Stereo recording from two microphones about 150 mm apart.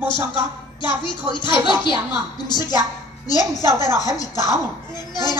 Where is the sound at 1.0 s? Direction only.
30° left (ahead or behind).